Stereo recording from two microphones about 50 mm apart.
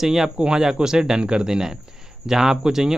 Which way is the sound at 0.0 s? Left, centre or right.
Centre.